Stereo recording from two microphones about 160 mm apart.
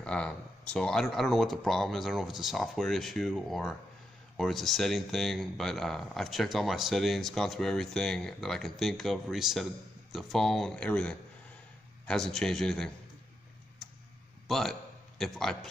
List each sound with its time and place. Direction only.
0.0 s speech: 5° left (ahead or behind)
14.5 s a man's voice: centre (ahead or behind)